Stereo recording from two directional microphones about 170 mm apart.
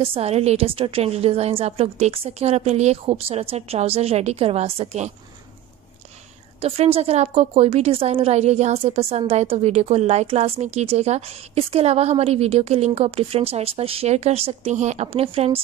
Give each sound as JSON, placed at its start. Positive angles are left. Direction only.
{"t": 0.0, "sound": "a woman's voice", "side_deg": -35}
{"t": 6.6, "sound": "a woman's voice", "side_deg": -35}